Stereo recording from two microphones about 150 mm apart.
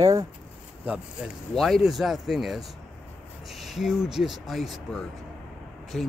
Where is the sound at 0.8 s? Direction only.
5° right (ahead or behind).